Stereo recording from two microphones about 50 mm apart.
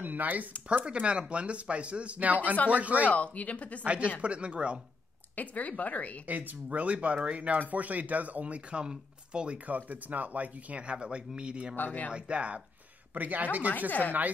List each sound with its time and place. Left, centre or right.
0.0 s a sound: right
0.7 s speech: right
3.1 s speech: left
3.8 s speech: right
5.3 s speech: left
6.2 s speech: right
9.7 s speech: right
11.7 s speech: left
12.1 s speech: right
13.1 s speech: right
13.7 s speech: left